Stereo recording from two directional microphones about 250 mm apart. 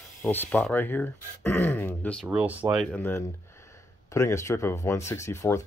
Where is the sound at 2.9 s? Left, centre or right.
Centre.